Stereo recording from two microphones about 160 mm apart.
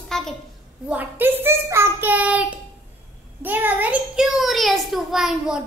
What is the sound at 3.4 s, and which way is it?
A child's voice, 10° right (ahead or behind).